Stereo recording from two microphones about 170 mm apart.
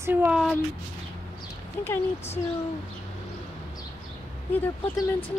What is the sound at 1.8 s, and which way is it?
Speech, 15° left (ahead or behind).